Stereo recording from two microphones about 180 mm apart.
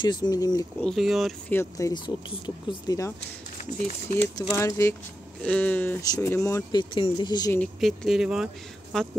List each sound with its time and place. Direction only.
0.0 s speech: 25° left (ahead or behind)
0.8 s speech: centre (ahead or behind)
1.5 s speech: 15° left (ahead or behind)
4.4 s speech: 15° left (ahead or behind)
7.5 s speech: 5° left (ahead or behind)